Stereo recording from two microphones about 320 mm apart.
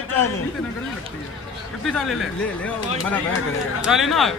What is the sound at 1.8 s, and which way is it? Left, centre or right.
Speech, centre.